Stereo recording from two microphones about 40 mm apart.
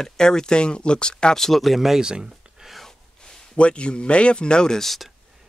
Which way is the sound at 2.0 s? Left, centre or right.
Right.